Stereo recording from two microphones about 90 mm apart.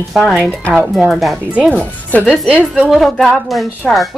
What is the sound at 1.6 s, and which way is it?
Speech, 10° left (ahead or behind).